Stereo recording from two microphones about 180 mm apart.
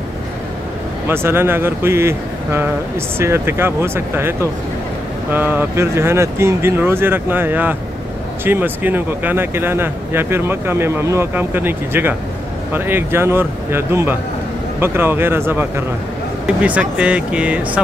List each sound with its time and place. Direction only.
1.0 s speech: 15° right (ahead or behind)